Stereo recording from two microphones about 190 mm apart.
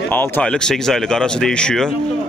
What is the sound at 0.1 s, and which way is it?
Speech, 10° left (ahead or behind).